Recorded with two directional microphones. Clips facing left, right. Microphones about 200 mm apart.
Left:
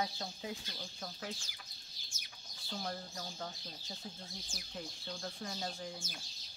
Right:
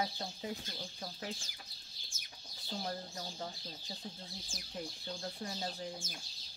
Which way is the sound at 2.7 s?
15° right (ahead or behind).